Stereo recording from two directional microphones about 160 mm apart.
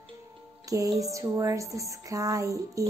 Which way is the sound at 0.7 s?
20° right (ahead or behind).